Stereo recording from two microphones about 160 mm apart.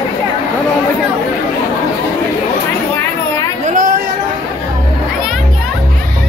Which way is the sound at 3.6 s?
55° right (ahead or behind).